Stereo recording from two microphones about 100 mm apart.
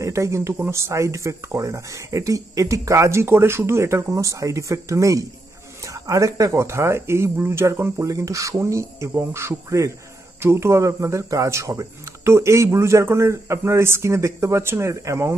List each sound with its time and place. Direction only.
0.0 s a man's voice: 30° right (ahead or behind)